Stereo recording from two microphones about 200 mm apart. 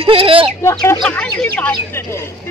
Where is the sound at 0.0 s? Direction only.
25° right (ahead or behind).